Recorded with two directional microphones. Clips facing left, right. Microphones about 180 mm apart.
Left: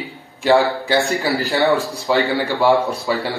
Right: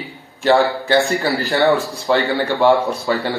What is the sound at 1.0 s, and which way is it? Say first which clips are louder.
Speech: right 2 dB; centre (ahead or behind).